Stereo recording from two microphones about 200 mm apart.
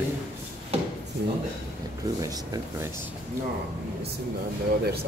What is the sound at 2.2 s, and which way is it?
Speech, 15° right (ahead or behind).